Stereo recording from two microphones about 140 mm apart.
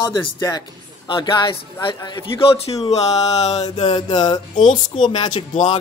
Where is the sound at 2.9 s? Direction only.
50° left (ahead or behind).